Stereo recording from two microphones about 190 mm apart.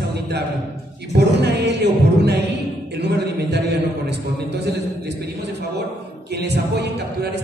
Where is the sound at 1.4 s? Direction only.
65° right (ahead or behind).